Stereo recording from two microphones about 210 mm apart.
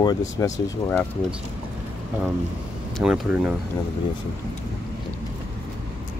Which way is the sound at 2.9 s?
Centre (ahead or behind).